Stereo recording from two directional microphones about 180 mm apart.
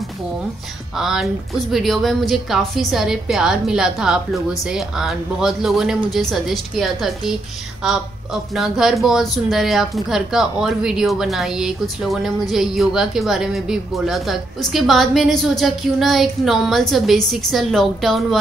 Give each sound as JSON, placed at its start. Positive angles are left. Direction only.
{"t": 0.9, "sound": "speech", "side_deg": 0}